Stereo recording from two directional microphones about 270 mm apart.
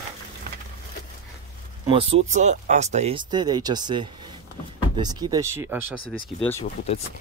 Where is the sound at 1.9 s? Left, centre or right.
Right.